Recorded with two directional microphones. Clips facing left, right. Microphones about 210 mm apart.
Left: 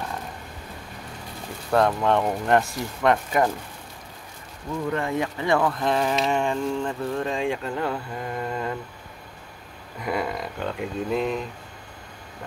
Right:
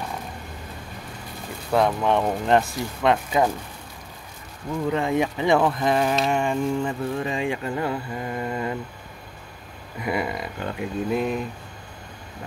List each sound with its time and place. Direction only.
1.7 s speech: 10° right (ahead or behind)
4.9 s speech: 20° right (ahead or behind)
5.7 s speech: 5° right (ahead or behind)
9.9 s speech: 5° right (ahead or behind)